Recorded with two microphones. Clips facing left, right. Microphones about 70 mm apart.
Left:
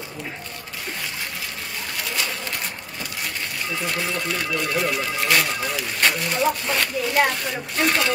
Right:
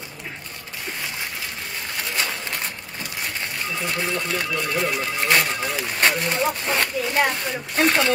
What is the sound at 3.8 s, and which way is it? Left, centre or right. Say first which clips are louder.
Speech: right 1 dB; right.